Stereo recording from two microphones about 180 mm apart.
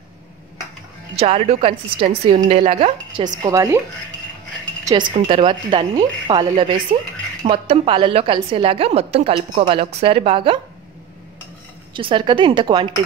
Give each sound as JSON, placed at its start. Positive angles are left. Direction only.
{"t": 1.1, "sound": "a woman's voice", "side_deg": -35}
{"t": 3.4, "sound": "speech", "side_deg": -20}
{"t": 5.1, "sound": "a woman's voice", "side_deg": -30}
{"t": 11.9, "sound": "speech", "side_deg": -25}